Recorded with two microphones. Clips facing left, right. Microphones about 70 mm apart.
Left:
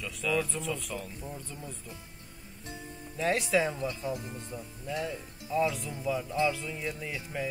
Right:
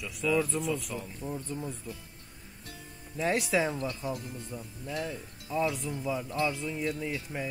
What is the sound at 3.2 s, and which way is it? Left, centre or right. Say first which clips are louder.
Speech: even; centre.